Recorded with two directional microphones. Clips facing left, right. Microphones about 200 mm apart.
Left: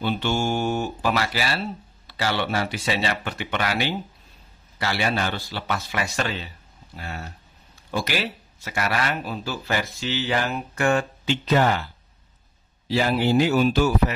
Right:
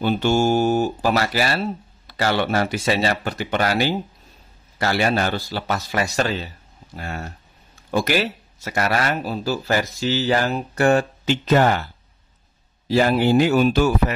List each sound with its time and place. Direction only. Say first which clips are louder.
0.0 s speech: right 6 dB; 45° right (ahead or behind)
12.8 s speech: right 4 dB; 45° right (ahead or behind)